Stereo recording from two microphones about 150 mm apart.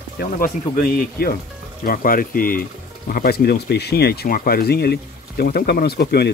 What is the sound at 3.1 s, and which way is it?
Speech, 85° left.